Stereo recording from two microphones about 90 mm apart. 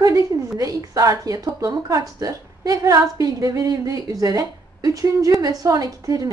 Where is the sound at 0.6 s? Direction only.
40° right (ahead or behind).